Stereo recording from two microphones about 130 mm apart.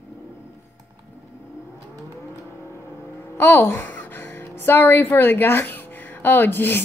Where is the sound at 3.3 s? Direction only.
20° left (ahead or behind).